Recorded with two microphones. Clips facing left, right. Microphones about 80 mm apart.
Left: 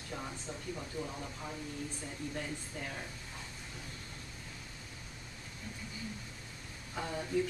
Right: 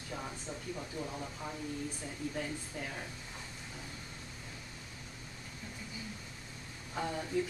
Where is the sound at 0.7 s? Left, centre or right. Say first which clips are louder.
Right 1 dB; centre.